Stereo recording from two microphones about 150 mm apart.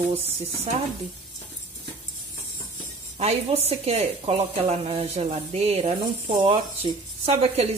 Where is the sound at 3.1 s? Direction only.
45° right (ahead or behind).